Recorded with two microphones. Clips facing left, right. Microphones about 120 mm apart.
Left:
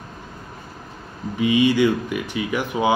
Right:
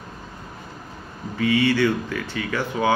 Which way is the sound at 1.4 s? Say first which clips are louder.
Left 2 dB; 15° left (ahead or behind).